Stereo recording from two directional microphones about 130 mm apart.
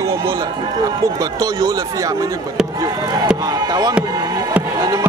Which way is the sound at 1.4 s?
30° right (ahead or behind).